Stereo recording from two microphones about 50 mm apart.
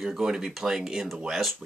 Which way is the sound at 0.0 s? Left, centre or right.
Centre.